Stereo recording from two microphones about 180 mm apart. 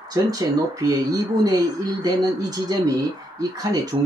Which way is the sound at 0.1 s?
20° right (ahead or behind).